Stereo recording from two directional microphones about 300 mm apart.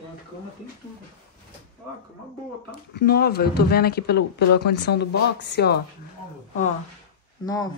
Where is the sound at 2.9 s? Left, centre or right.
Left.